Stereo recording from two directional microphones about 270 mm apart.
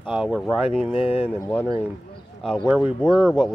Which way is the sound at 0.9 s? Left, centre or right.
Left.